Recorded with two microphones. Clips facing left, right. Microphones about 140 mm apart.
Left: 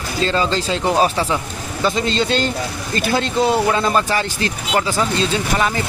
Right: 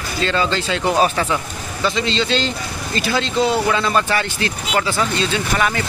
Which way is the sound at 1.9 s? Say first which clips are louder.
Left 1 dB; 45° left (ahead or behind).